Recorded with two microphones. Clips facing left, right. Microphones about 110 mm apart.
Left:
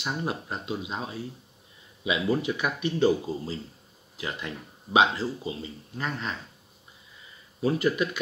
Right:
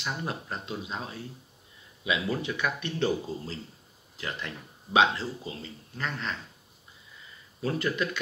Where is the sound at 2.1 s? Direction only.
15° left (ahead or behind).